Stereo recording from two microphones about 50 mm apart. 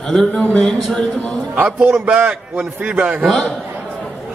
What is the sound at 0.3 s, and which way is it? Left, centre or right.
Speech, left.